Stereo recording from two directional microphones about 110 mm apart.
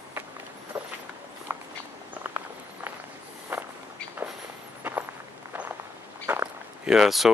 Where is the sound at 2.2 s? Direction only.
20° right (ahead or behind).